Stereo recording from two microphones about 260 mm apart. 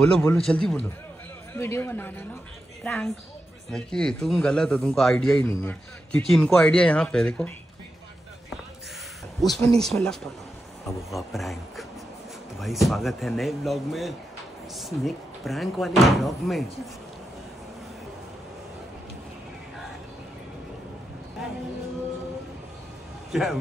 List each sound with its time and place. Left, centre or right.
0.0 s a man's voice: centre
9.4 s a man's voice: centre
23.3 s a man's voice: centre